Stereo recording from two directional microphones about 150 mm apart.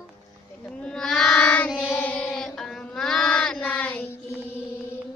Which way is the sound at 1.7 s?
Centre (ahead or behind).